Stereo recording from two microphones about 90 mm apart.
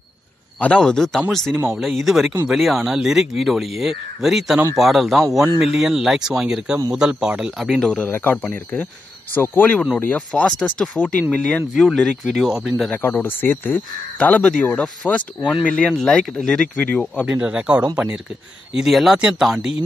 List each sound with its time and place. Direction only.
0.6 s speech: 10° left (ahead or behind); by 7.7 s 5° right (ahead or behind)
7.7 s speech: 5° left (ahead or behind)
8.1 s speech: 20° left (ahead or behind); by 12.9 s centre (ahead or behind)
12.9 s speech: 25° left (ahead or behind)
17.3 s speech: 15° right (ahead or behind)